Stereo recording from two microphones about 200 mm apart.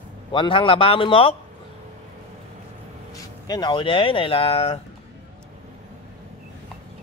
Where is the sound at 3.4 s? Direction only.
20° left (ahead or behind).